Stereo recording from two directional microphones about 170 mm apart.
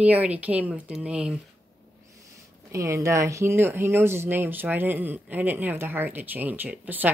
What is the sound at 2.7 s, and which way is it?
Speech, 15° right (ahead or behind).